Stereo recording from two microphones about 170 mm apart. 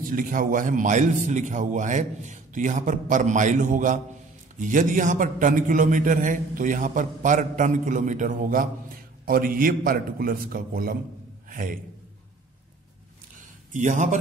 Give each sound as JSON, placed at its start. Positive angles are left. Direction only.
{"t": 0.1, "sound": "a man's voice", "side_deg": -55}
{"t": 13.7, "sound": "a man's voice", "side_deg": -45}